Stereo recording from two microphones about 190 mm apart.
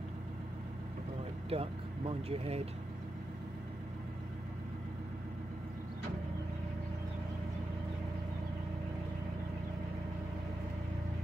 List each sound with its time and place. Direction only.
1.5 s speech: 30° right (ahead or behind)